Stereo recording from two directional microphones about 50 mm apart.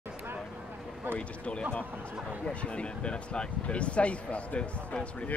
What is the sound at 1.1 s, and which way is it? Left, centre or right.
Speech, left.